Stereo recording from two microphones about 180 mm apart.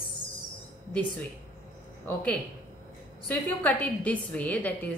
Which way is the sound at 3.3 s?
10° left (ahead or behind).